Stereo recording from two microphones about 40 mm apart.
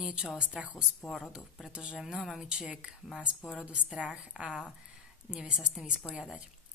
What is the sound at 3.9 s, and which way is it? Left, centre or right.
Speech, right.